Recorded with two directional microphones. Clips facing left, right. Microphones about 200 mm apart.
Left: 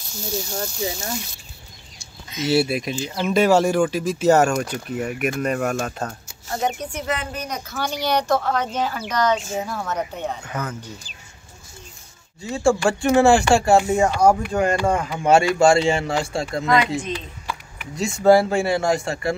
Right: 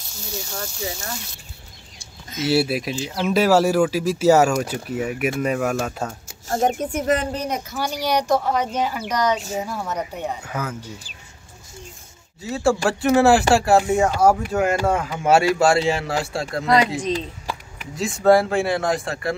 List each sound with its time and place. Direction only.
2.3 s speech: 5° right (ahead or behind)
6.4 s a woman's voice: 45° right (ahead or behind)
7.7 s speech: 10° right (ahead or behind)
12.4 s speech: 5° right (ahead or behind)
16.6 s speech: 35° right (ahead or behind)
17.0 s a sound: 35° right (ahead or behind)
17.9 s speech: centre (ahead or behind)